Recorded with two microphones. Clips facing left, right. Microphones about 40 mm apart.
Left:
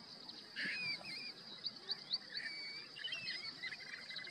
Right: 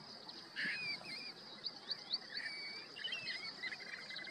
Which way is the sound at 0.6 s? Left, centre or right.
Centre.